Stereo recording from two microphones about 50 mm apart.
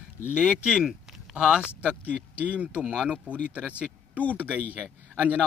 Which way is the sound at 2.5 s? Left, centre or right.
Right.